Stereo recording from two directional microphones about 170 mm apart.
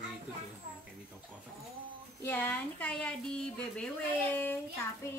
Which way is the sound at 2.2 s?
10° left (ahead or behind).